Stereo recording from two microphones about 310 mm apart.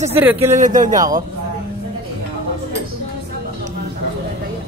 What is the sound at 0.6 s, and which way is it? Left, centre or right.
Speech, right.